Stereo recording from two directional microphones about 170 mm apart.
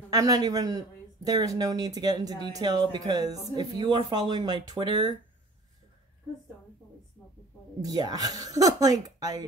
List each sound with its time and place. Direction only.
0.1 s speech: 20° right (ahead or behind)
7.8 s speech: 20° right (ahead or behind)